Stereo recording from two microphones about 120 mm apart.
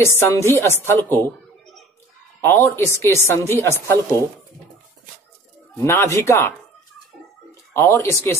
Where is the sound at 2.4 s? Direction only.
20° left (ahead or behind).